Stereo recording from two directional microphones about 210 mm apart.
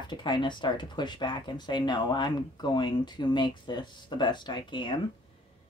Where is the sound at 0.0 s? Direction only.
20° left (ahead or behind).